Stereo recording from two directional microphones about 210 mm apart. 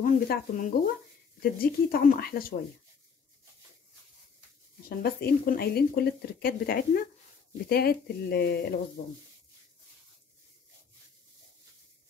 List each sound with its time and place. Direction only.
0.0 s speech: 40° left (ahead or behind)
4.8 s speech: 45° left (ahead or behind)